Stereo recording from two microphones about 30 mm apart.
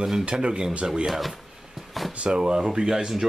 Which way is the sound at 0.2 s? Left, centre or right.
Right.